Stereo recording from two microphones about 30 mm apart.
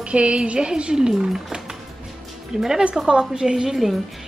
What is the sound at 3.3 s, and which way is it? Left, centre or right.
Speech, right.